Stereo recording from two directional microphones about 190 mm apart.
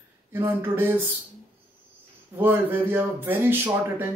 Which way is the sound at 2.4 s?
10° right (ahead or behind).